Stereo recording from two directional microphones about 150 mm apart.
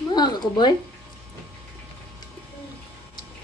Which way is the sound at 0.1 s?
30° left (ahead or behind).